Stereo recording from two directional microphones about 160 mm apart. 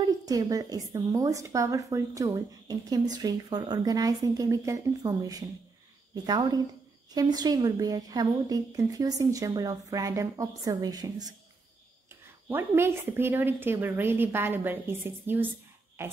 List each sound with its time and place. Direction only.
0.2 s a woman's voice: 20° right (ahead or behind)
12.4 s a woman's voice: 15° right (ahead or behind)